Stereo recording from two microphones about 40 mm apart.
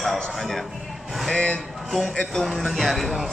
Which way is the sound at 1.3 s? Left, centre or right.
Left.